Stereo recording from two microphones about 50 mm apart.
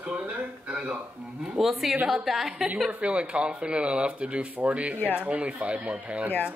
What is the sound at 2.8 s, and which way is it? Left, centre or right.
Speech, right.